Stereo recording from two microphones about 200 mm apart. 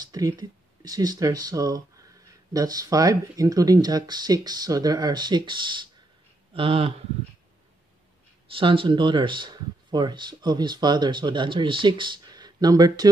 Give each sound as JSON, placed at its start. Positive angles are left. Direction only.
{"t": 0.0, "sound": "speech", "side_deg": -20}
{"t": 8.5, "sound": "speech", "side_deg": -25}